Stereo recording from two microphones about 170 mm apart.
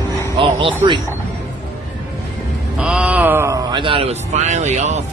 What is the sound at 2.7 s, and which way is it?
Speech, 5° right (ahead or behind).